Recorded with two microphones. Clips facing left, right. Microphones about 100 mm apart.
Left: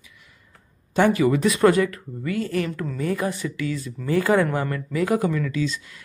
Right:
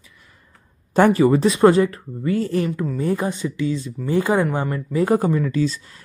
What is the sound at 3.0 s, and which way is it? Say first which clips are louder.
Speech: right 2 dB; 25° right (ahead or behind).